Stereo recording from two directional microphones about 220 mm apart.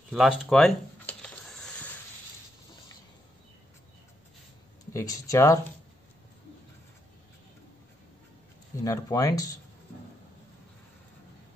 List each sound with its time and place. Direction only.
0.1 s a sound: centre (ahead or behind)
4.9 s speech: 15° left (ahead or behind)
8.8 s speech: 15° left (ahead or behind)